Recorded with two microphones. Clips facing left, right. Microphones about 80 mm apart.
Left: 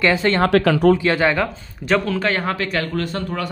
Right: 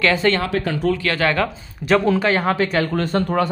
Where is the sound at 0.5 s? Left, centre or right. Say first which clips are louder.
Left 6 dB; left.